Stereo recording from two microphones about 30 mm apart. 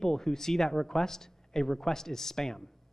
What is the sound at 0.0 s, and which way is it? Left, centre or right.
Speech, centre.